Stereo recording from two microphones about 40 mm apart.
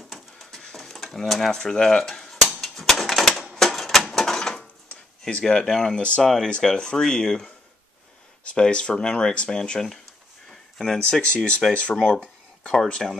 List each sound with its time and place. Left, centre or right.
0.1 s a sound: centre
0.7 s stir: centre
1.6 s speech: centre
2.4 s typewriter: centre
3.5 s a sound: centre
5.4 s speech: centre
5.9 s speech: left
6.2 s speech: centre
10.5 s a sound: centre
11.0 s speech: left
12.6 s speech: centre